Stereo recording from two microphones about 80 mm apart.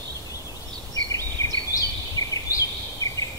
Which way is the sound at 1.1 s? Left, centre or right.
Left.